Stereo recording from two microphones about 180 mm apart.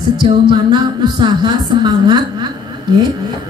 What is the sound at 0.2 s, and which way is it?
A woman's voice, 25° right (ahead or behind).